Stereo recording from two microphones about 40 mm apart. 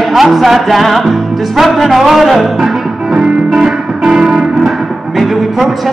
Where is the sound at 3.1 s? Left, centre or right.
Centre.